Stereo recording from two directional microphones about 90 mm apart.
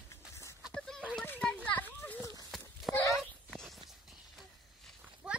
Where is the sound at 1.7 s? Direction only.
15° left (ahead or behind).